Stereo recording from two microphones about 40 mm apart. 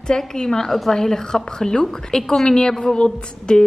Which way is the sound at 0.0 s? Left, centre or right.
Centre.